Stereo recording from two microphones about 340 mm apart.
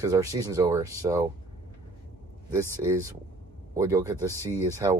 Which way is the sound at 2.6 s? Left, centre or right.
Centre.